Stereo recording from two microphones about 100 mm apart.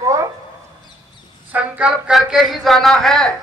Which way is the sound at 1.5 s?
15° right (ahead or behind).